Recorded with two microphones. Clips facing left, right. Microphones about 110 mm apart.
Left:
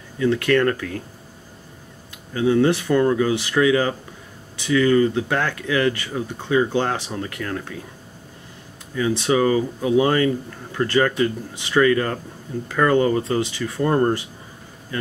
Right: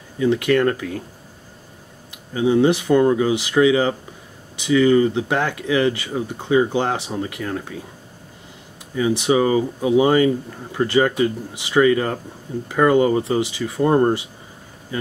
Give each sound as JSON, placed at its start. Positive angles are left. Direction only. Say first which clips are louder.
{"t": 0.2, "sound": "speech", "louder": "right 1 dB", "side_deg": -15}
{"t": 2.0, "sound": "speech", "louder": "right 1 dB", "side_deg": -15}
{"t": 8.9, "sound": "speech", "louder": "right 2 dB", "side_deg": -15}